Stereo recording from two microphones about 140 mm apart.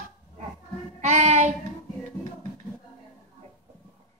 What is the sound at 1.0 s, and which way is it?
Child singing, 55° right (ahead or behind).